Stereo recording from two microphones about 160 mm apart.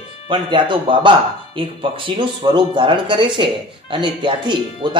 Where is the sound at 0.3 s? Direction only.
30° right (ahead or behind).